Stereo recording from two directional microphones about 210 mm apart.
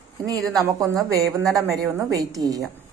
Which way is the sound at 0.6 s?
15° right (ahead or behind).